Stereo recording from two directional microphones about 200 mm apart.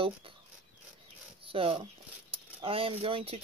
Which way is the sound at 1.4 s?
25° right (ahead or behind).